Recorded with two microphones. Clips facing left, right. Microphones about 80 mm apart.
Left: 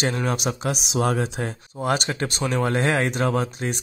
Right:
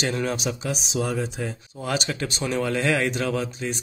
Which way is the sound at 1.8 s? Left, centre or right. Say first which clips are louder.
Left 3 dB; left.